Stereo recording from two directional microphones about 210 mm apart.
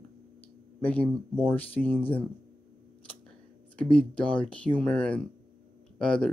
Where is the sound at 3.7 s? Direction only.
5° left (ahead or behind).